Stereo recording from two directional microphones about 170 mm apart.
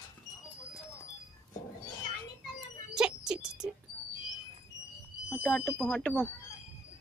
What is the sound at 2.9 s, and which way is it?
Music, 5° right (ahead or behind).